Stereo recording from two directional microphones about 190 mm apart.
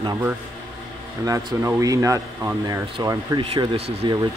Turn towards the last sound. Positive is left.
turn(degrees=-25)  # may be behind; listen again after turning